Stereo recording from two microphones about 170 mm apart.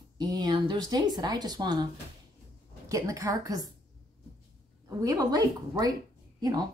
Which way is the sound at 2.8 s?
20° right (ahead or behind).